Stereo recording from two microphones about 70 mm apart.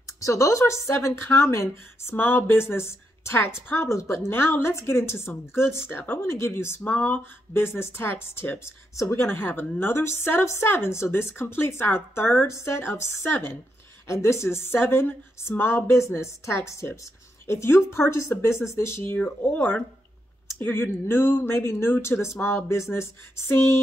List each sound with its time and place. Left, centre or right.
0.2 s a woman's voice: left
2.1 s a woman's voice: left
6.8 s a woman's voice: left
19.1 s a woman's voice: left